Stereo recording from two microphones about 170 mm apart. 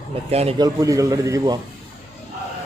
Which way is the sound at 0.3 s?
35° right (ahead or behind).